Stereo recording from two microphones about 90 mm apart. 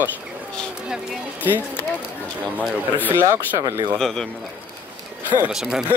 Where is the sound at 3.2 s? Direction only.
35° right (ahead or behind).